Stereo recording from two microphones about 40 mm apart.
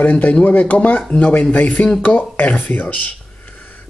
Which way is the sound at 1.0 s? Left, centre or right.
Left.